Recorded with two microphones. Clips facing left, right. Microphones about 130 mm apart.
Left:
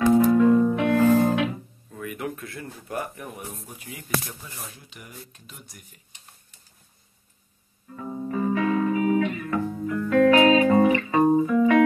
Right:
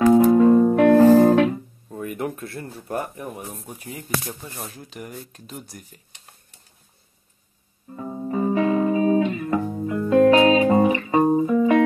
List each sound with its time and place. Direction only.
0.1 s music: 35° right (ahead or behind)
3.0 s speech: 20° right (ahead or behind)
3.6 s speech: 40° right (ahead or behind)
7.9 s music: 25° right (ahead or behind)